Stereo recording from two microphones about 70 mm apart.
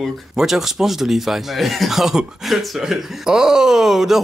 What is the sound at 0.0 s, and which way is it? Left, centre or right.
Speech, centre.